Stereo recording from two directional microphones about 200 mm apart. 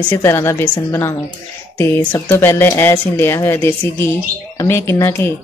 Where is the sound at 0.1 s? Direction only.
10° left (ahead or behind).